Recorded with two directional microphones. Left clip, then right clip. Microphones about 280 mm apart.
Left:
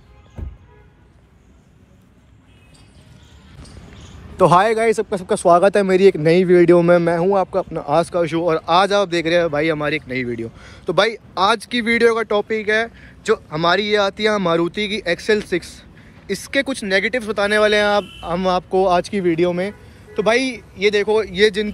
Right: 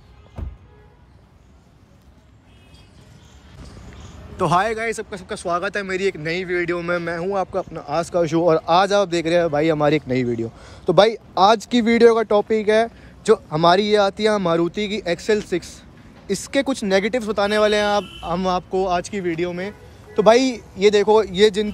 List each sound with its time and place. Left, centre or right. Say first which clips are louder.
4.4 s speech: left 6 dB; centre
20.2 s speech: right 3 dB; centre